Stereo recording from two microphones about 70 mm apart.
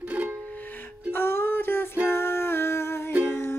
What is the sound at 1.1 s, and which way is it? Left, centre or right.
Music, left.